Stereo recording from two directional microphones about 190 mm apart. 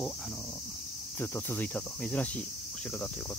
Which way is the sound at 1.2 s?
10° left (ahead or behind).